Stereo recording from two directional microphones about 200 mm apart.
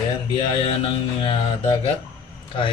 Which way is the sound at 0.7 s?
25° left (ahead or behind).